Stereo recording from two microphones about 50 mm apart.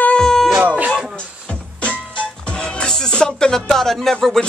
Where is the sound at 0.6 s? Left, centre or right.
Right.